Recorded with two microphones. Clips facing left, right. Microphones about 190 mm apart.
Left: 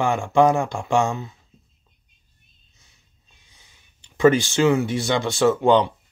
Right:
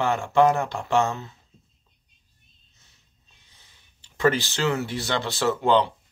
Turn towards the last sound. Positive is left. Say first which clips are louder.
# left 4 dB
turn(degrees=15)  # may be behind; listen again after turning